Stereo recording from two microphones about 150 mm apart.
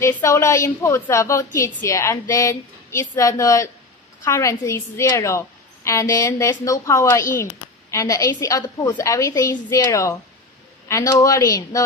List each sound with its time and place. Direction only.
0.0 s a woman's voice: 20° left (ahead or behind)